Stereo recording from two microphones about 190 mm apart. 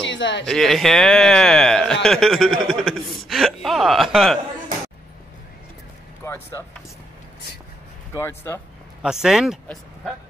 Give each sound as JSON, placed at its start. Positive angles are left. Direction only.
{"t": 0.0, "sound": "a sound", "side_deg": 70}
{"t": 0.5, "sound": "a man's voice", "side_deg": 0}
{"t": 6.2, "sound": "speech", "side_deg": 15}
{"t": 8.1, "sound": "speech", "side_deg": 15}
{"t": 9.0, "sound": "a man's voice", "side_deg": 0}